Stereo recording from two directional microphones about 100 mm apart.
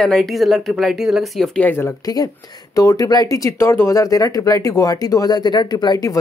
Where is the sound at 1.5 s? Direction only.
20° left (ahead or behind).